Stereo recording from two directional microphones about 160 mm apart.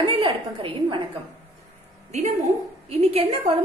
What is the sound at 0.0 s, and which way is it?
A woman's voice, 35° right (ahead or behind).